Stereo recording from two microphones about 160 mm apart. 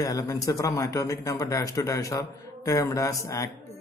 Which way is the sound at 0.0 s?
20° left (ahead or behind).